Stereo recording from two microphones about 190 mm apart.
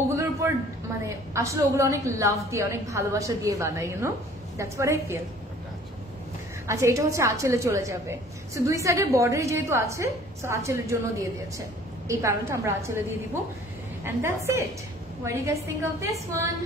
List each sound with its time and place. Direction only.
0.4 s a sound: 15° right (ahead or behind)
1.0 s a woman's voice: 15° right (ahead or behind)
6.7 s a woman's voice: 15° right (ahead or behind)
14.0 s a woman's voice: 15° right (ahead or behind)